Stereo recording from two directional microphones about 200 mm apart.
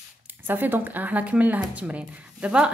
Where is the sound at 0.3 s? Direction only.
10° right (ahead or behind).